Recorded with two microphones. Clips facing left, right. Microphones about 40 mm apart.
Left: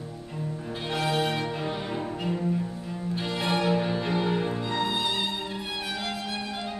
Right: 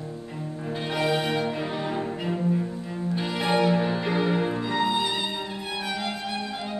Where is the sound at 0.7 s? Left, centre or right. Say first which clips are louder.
Right 3 dB; centre.